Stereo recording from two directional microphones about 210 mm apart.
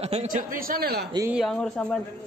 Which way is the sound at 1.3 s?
Centre (ahead or behind).